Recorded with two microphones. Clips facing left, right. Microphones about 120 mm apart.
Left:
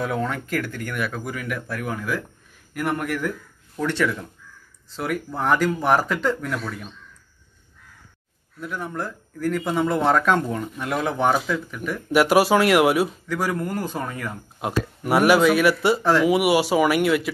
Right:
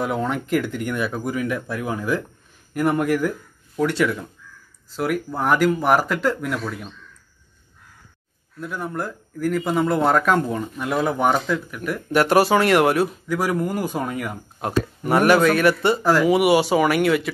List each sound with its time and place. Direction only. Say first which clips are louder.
0.0 s speech: right 2 dB; 15° right (ahead or behind)
8.7 s speech: right 2 dB; 5° right (ahead or behind)
13.3 s speech: right 3 dB; 10° right (ahead or behind)
14.6 s speech: right 2 dB; 5° left (ahead or behind)